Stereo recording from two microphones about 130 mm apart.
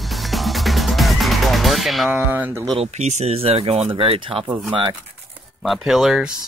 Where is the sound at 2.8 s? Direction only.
60° right (ahead or behind); by 4.5 s 45° right (ahead or behind).